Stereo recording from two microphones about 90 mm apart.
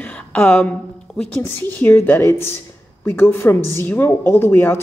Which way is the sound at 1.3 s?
20° left (ahead or behind).